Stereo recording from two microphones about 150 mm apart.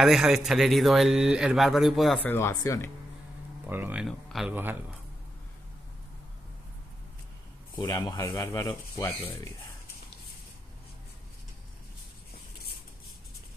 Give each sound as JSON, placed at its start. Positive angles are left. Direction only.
{"t": 0.0, "sound": "speech", "side_deg": -5}
{"t": 2.2, "sound": "speech", "side_deg": 20}
{"t": 3.6, "sound": "speech", "side_deg": -15}
{"t": 4.0, "sound": "speech", "side_deg": 0}
{"t": 4.6, "sound": "speech", "side_deg": -15}
{"t": 7.7, "sound": "speech", "side_deg": 25}